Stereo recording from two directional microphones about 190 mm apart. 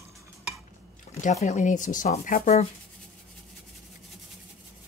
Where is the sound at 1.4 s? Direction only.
40° left (ahead or behind).